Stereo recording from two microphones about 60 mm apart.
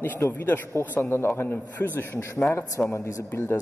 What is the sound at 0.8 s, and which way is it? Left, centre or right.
A man's voice, left.